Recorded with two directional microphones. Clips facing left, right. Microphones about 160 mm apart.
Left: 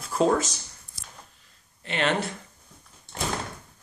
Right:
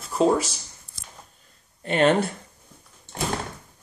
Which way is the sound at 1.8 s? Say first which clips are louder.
Right 7 dB; 45° right (ahead or behind).